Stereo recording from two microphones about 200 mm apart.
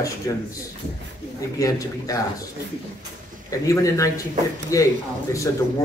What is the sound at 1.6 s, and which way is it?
Speech, 15° left (ahead or behind).